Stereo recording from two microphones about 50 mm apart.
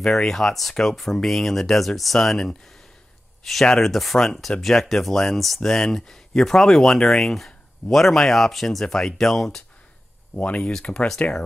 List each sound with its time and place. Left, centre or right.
0.0 s speech: centre
10.3 s speech: left
11.2 s speech: left